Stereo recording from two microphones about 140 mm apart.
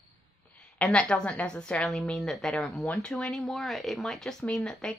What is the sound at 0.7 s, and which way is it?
A woman's voice, 10° left (ahead or behind).